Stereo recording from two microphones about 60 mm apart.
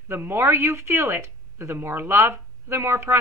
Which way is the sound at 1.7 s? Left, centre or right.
Right.